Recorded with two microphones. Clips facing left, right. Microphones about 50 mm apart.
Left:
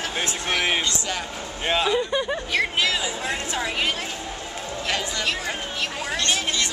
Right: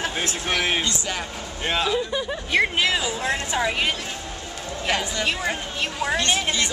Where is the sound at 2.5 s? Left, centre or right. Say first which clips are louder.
Right 3 dB; centre.